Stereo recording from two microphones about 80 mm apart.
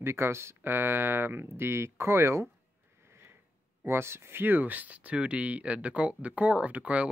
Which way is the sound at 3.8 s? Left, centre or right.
Right.